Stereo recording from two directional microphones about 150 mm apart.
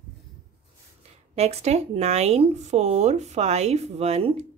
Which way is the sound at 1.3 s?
45° right (ahead or behind).